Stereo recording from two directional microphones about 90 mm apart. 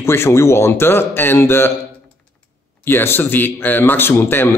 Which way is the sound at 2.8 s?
25° left (ahead or behind).